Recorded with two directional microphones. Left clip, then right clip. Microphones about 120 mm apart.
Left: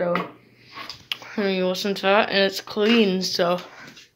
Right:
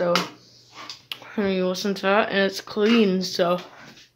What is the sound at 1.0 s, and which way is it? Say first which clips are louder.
Speech: left 1 dB; 20° right (ahead or behind).